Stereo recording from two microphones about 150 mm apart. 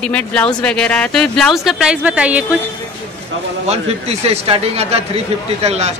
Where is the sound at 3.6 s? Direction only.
45° right (ahead or behind).